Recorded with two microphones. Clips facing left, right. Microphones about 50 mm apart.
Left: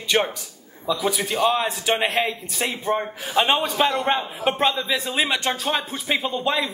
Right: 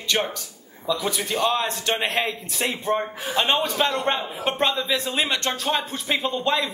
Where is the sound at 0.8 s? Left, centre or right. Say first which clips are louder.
Left 2 dB; centre.